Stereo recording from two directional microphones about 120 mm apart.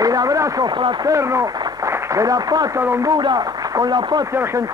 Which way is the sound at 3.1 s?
35° right (ahead or behind).